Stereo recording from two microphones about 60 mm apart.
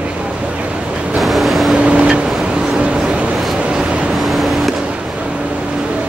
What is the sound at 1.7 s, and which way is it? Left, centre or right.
Vehicle, centre.